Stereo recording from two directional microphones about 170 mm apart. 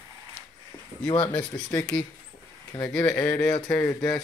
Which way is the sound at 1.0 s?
30° left (ahead or behind).